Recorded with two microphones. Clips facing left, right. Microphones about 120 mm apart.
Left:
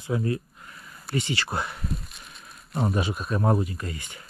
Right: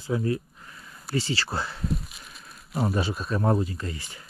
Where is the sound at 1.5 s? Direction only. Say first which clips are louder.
Left 1 dB; 20° left (ahead or behind).